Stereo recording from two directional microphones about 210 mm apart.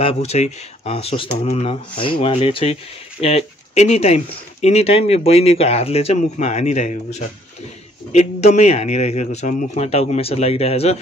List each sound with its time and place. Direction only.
0.0 s a man's voice: 30° left (ahead or behind)